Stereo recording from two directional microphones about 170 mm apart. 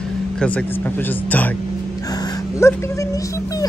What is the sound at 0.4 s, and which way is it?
Speech, 10° left (ahead or behind).